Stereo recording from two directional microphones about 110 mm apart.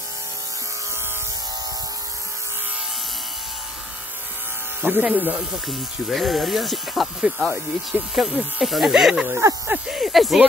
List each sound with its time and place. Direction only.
4.8 s speech: 15° right (ahead or behind)
5.7 s speech: centre (ahead or behind)
9.3 s speech: 30° right (ahead or behind)
9.8 s speech: centre (ahead or behind)